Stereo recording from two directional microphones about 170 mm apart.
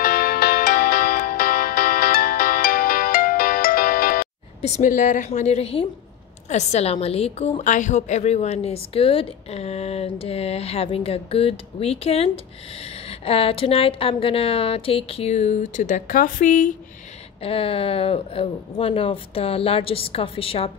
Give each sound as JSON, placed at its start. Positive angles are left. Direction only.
{"t": 0.0, "sound": "music", "side_deg": 60}
{"t": 4.6, "sound": "a woman's voice", "side_deg": 40}
{"t": 15.8, "sound": "speech", "side_deg": 50}
{"t": 17.4, "sound": "a woman's voice", "side_deg": 35}